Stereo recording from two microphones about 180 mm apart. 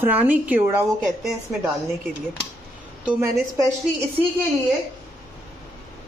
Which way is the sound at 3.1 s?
15° right (ahead or behind).